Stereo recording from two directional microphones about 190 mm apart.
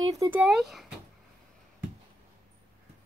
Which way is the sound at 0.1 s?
15° right (ahead or behind).